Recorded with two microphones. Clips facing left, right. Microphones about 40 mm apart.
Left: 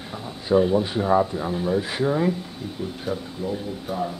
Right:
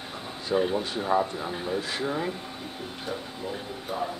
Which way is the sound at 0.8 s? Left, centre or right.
Centre.